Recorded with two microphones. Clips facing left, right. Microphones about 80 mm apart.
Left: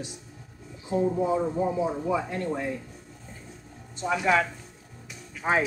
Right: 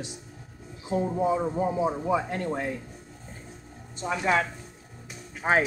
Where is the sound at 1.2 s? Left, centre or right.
Right.